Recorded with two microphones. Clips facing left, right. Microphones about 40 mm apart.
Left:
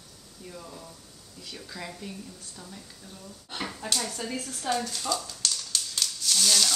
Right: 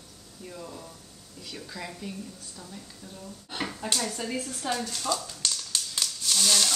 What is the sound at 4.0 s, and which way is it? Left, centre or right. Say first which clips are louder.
Speech: right 2 dB; centre.